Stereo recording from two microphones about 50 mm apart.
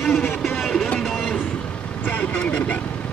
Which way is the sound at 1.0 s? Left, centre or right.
Centre.